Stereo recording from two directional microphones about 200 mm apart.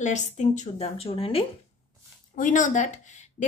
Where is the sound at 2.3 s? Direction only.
40° left (ahead or behind).